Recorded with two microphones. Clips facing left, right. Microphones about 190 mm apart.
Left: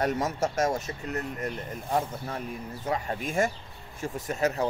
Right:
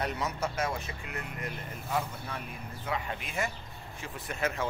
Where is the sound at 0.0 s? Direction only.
45° left (ahead or behind).